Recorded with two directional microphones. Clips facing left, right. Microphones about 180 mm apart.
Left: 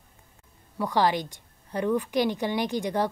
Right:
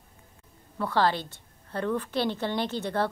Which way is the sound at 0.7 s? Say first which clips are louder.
Left 1 dB; 15° left (ahead or behind).